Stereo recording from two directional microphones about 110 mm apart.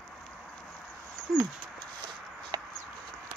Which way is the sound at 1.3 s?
Centre (ahead or behind).